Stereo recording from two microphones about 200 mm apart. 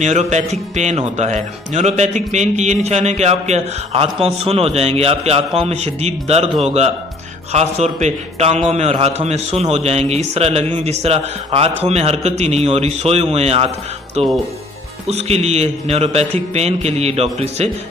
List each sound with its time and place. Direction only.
0.0 s speech: 35° right (ahead or behind)